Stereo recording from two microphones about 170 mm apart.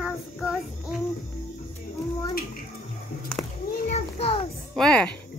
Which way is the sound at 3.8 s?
40° left (ahead or behind).